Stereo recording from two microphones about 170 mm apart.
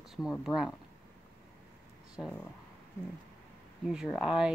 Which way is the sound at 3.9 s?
5° right (ahead or behind).